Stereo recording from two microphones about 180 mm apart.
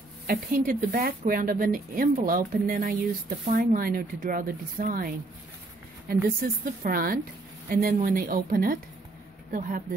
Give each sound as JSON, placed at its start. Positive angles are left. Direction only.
{"t": 0.3, "sound": "speech", "side_deg": -50}
{"t": 6.2, "sound": "speech", "side_deg": -50}